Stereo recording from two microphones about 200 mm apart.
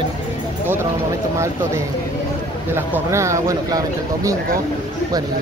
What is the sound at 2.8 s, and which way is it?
Speech, 15° right (ahead or behind).